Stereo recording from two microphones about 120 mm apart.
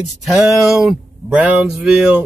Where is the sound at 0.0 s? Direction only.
Centre (ahead or behind).